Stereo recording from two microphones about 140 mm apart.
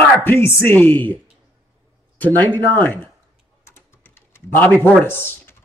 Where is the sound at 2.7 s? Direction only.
15° left (ahead or behind).